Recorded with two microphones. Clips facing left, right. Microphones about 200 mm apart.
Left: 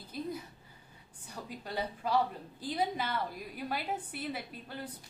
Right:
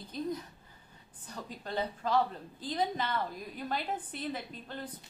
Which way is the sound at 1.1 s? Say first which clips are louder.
Even; 10° left (ahead or behind).